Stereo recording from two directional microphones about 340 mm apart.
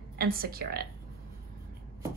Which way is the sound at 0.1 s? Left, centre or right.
Right.